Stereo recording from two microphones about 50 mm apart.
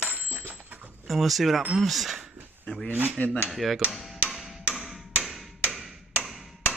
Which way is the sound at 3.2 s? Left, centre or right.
Left.